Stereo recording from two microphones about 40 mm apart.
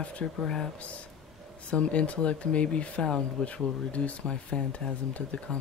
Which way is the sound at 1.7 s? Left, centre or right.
Left.